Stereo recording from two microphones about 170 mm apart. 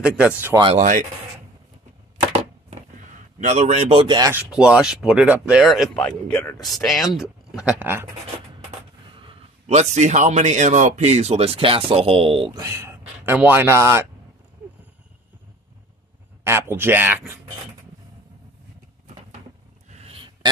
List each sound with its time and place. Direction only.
0.0 s speech: 5° right (ahead or behind)
0.7 s speech: 50° right (ahead or behind)
2.7 s a sound: 40° right (ahead or behind)
4.3 s speech: 5° right (ahead or behind)
9.2 s speech: 35° right (ahead or behind); by 14.0 s 15° right (ahead or behind)
16.4 s speech: 15° right (ahead or behind)
19.9 s a sound: 35° right (ahead or behind)